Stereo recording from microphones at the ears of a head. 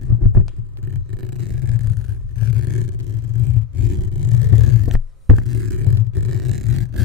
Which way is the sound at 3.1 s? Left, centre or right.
Left.